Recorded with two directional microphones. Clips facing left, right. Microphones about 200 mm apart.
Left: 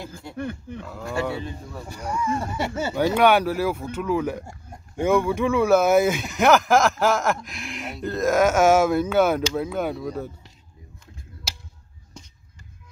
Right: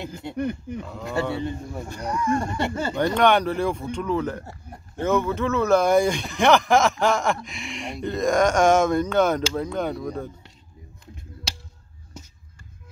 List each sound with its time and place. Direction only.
0.0 s speech: 20° right (ahead or behind)
1.9 s speech: 10° left (ahead or behind)